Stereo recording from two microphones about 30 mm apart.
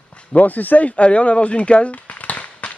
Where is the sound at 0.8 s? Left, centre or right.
Left.